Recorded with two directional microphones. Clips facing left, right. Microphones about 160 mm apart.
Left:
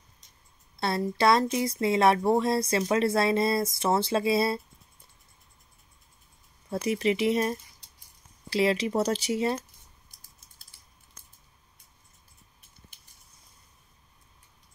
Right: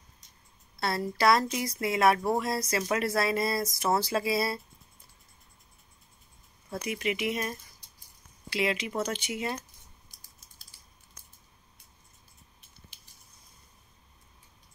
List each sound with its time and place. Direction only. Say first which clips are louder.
0.7 s speech: left 2 dB; 20° left (ahead or behind)
6.7 s speech: left 6 dB; 35° left (ahead or behind)